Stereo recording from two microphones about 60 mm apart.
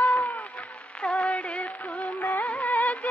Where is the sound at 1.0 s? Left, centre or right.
Centre.